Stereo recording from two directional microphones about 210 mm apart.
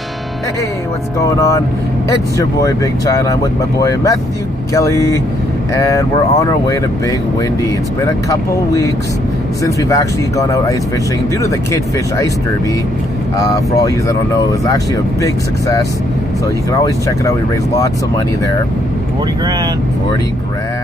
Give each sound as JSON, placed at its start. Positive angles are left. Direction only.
{"t": 1.2, "sound": "speech", "side_deg": 15}
{"t": 13.4, "sound": "speech", "side_deg": 15}
{"t": 16.8, "sound": "speech", "side_deg": 15}